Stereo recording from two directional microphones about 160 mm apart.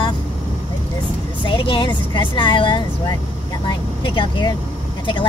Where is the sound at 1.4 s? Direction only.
35° left (ahead or behind).